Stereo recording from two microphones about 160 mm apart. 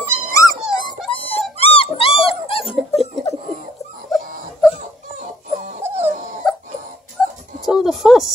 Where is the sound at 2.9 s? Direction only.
40° left (ahead or behind).